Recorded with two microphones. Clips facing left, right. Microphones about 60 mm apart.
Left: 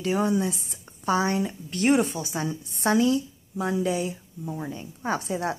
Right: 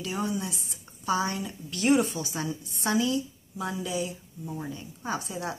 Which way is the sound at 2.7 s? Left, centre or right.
Left.